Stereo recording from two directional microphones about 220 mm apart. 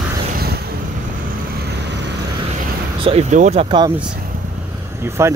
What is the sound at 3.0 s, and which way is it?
Speech, 30° right (ahead or behind).